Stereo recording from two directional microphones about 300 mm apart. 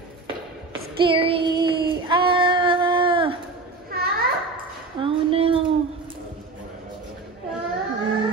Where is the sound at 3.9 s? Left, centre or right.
Right.